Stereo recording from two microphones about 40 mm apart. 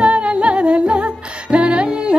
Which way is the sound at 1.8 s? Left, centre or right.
Right.